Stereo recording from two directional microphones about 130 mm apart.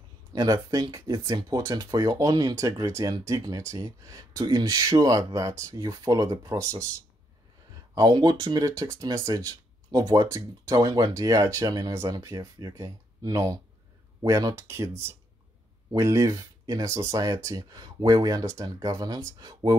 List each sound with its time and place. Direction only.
0.3 s speech: 30° right (ahead or behind)
7.9 s speech: 30° right (ahead or behind)